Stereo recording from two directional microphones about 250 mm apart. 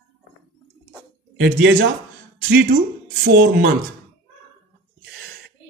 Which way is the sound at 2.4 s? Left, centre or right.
Right.